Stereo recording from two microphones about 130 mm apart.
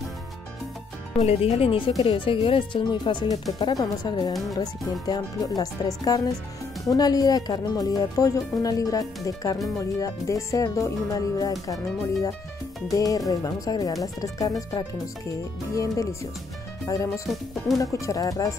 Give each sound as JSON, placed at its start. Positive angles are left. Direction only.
{"t": 1.2, "sound": "speech", "side_deg": 50}
{"t": 4.3, "sound": "speech", "side_deg": 0}
{"t": 5.0, "sound": "speech", "side_deg": 30}